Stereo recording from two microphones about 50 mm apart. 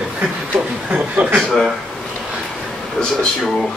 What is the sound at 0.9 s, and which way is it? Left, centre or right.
Speech, right.